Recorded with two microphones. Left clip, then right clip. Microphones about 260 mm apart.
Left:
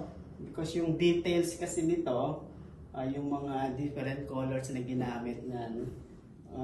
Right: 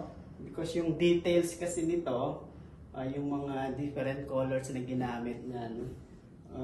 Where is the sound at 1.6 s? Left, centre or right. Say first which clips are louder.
Left 1 dB; centre.